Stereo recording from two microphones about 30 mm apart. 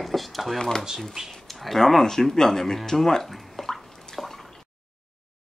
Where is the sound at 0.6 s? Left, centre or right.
Left.